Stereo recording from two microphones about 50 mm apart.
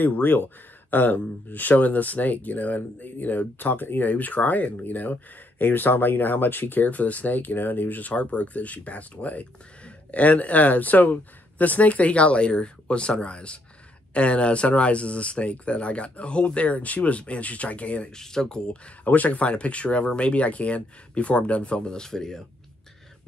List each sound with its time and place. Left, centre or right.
0.0 s speech: left
18.1 s speech: centre
19.0 s speech: left; by 22.4 s centre